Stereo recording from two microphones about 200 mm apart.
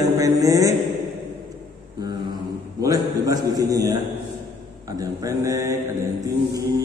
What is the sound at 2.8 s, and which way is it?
A man's voice, 20° right (ahead or behind).